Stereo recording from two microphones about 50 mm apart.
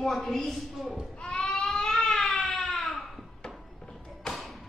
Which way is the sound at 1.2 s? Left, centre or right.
Left.